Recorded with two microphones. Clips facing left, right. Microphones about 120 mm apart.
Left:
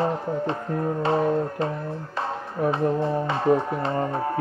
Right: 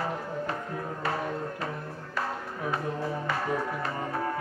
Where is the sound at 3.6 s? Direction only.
25° left (ahead or behind).